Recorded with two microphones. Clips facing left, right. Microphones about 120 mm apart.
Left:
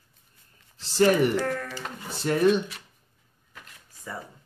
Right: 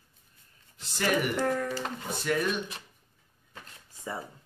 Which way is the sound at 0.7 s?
30° left (ahead or behind).